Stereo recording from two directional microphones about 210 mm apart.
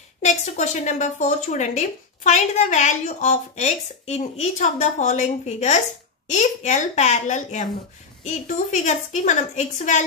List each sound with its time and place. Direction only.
0.2 s speech: 35° left (ahead or behind)